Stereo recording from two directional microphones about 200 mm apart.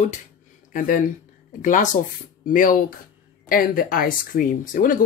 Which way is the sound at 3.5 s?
45° left (ahead or behind).